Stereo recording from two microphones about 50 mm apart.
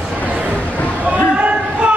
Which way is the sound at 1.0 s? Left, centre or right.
Right.